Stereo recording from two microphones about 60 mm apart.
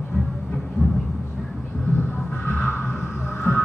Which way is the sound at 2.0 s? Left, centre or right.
Left.